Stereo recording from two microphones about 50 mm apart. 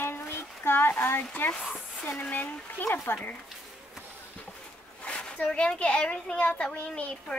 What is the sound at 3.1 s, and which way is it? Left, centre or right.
Speech, left.